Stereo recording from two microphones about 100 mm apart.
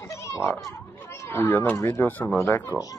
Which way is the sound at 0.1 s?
30° left (ahead or behind).